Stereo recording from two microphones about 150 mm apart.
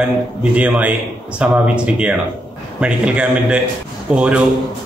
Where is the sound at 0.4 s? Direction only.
10° right (ahead or behind).